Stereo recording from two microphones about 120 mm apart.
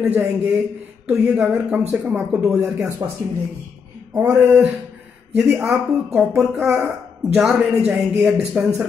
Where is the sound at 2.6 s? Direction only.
25° right (ahead or behind).